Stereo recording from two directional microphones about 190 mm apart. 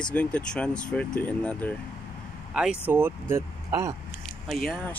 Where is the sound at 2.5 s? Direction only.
5° right (ahead or behind).